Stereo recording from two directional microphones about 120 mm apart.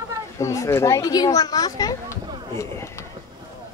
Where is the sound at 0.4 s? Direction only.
25° left (ahead or behind).